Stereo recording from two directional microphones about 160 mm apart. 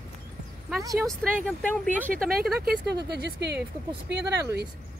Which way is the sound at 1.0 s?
10° left (ahead or behind).